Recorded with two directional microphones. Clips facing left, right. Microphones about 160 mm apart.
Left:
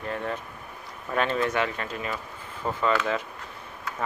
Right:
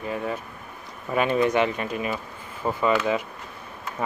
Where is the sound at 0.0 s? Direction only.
10° right (ahead or behind).